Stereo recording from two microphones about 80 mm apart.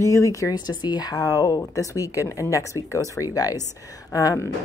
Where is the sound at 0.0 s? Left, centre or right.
Left.